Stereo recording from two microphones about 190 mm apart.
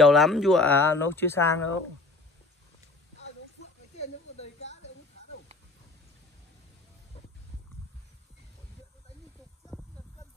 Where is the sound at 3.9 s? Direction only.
35° left (ahead or behind).